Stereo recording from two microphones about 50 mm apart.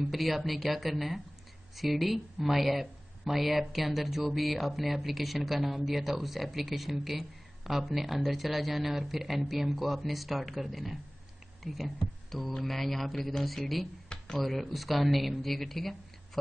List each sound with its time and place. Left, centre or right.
0.0 s speech: centre
14.0 s a sound: centre
14.4 s speech: centre